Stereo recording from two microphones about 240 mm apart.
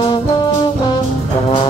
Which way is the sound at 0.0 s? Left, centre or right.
Left.